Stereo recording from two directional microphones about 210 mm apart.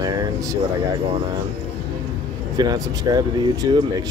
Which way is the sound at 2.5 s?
20° right (ahead or behind).